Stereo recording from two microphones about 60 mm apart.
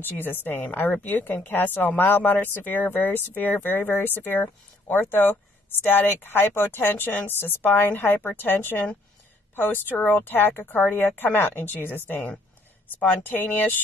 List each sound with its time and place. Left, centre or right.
0.0 s speech: left